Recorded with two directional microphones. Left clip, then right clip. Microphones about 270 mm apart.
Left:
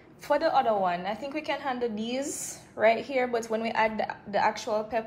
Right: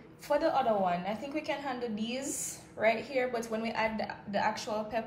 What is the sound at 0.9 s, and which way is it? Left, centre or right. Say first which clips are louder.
Speech: left 3 dB; left.